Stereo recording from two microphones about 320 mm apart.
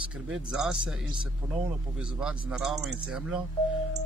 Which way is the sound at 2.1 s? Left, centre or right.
Centre.